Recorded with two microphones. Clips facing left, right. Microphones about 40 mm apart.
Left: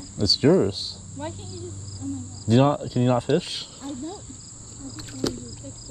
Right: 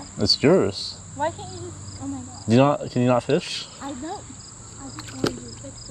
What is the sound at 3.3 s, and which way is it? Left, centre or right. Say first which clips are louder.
Speech: right 1 dB; centre.